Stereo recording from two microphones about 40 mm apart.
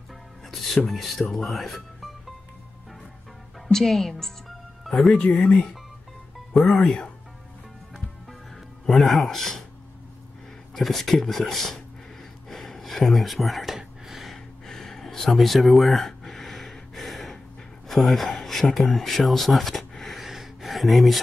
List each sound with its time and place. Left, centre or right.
0.5 s speech: centre
3.6 s speech: centre
8.9 s speech: centre
10.7 s speech: centre
12.4 s gasp: centre
13.7 s a sound: centre
14.7 s a sound: centre